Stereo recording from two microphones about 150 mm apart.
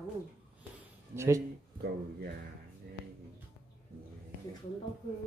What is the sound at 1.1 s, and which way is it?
Speech, 20° right (ahead or behind).